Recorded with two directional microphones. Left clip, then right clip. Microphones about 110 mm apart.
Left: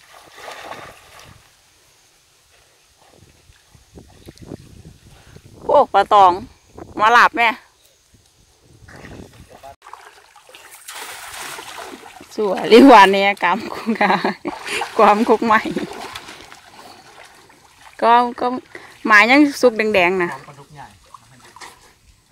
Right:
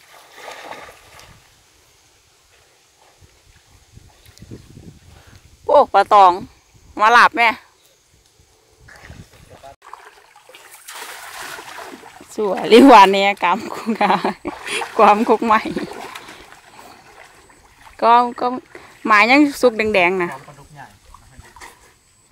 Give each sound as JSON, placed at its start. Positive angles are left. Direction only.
{"t": 0.1, "sound": "boat", "side_deg": 10}
{"t": 5.7, "sound": "speech", "side_deg": 10}
{"t": 10.5, "sound": "water", "side_deg": 15}
{"t": 11.5, "sound": "boat", "side_deg": -15}
{"t": 17.9, "sound": "speech", "side_deg": 5}
{"t": 20.4, "sound": "a sound", "side_deg": -25}
{"t": 21.4, "sound": "dog", "side_deg": -15}